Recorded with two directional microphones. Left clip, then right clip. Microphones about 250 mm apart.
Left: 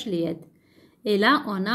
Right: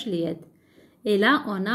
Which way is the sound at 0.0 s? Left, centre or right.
Centre.